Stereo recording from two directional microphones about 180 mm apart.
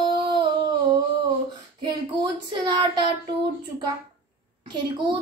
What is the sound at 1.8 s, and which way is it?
Child singing, 25° right (ahead or behind).